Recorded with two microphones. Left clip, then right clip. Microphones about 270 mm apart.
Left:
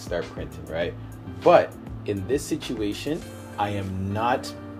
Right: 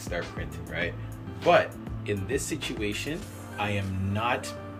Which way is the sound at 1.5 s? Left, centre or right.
Left.